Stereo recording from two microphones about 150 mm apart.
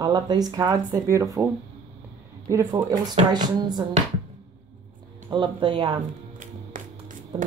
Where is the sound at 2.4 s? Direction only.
20° right (ahead or behind).